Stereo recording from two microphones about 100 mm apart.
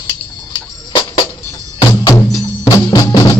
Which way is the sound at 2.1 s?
30° left (ahead or behind).